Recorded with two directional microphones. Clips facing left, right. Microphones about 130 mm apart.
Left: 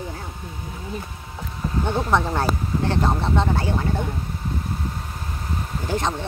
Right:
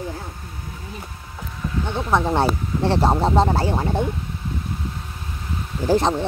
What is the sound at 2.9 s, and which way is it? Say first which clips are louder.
Speech: right 5 dB; 35° right (ahead or behind).